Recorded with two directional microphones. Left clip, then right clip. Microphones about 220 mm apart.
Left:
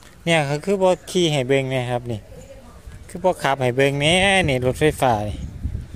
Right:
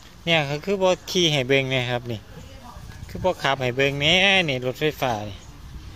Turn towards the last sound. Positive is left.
turn(degrees=30)  # may be behind; listen again after turning